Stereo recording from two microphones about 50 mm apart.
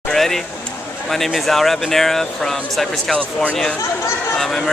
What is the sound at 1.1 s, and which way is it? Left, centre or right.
Speech, centre.